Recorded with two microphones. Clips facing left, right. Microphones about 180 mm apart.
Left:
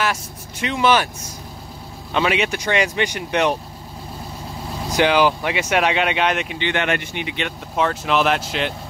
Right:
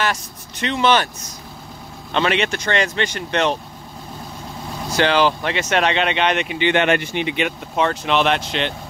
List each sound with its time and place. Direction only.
0.0 s speech: 5° left (ahead or behind)
2.1 s speech: 5° left (ahead or behind)
4.8 s speech: 10° left (ahead or behind)
6.6 s speech: 20° right (ahead or behind)
7.7 s speech: centre (ahead or behind)